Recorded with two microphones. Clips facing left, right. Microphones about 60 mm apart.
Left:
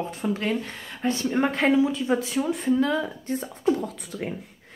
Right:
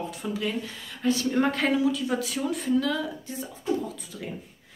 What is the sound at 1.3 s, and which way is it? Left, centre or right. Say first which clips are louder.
Speech: left 1 dB; centre.